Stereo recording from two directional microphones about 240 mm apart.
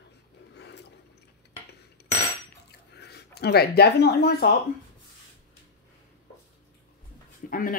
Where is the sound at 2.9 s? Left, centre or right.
Left.